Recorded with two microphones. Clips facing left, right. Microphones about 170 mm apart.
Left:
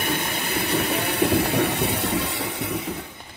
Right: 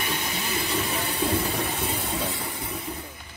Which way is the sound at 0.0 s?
55° left (ahead or behind).